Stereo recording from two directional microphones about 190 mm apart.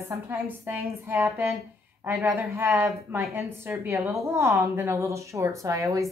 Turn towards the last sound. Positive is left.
turn(degrees=-15)  # may be behind; listen again after turning